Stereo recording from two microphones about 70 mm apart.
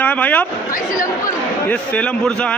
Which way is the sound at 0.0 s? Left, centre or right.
Left.